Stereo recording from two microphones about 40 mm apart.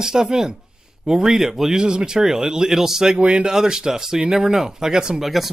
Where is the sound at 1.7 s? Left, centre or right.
Centre.